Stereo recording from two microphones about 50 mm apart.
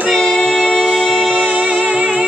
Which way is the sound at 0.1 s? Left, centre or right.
Centre.